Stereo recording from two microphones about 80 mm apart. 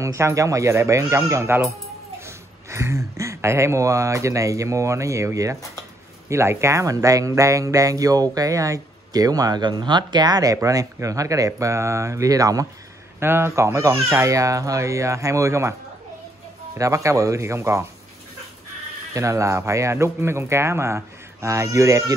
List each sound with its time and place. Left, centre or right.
0.0 s speech: right
13.2 s speech: right
16.7 s speech: right
19.1 s speech: right